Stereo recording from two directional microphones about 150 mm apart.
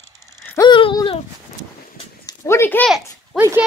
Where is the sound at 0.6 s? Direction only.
35° left (ahead or behind).